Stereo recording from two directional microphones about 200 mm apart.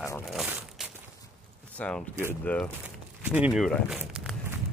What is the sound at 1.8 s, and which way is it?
Speech, 5° left (ahead or behind).